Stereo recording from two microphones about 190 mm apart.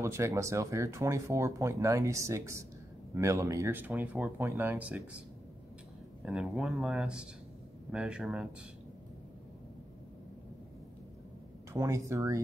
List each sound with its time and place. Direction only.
0.0 s speech: 15° right (ahead or behind)
6.2 s speech: 5° right (ahead or behind)
11.7 s speech: 15° right (ahead or behind)